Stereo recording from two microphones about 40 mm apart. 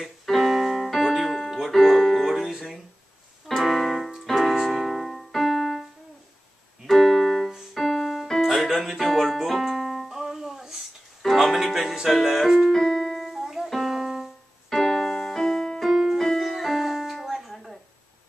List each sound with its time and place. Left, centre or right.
0.0 s keyboard: centre
1.1 s music: centre
3.4 s keyboard: centre
6.9 s keyboard: centre
7.7 s music: centre
12.7 s keyboard: centre
13.1 s music: centre
14.7 s music: centre
15.8 s keyboard: centre
17.1 s music: centre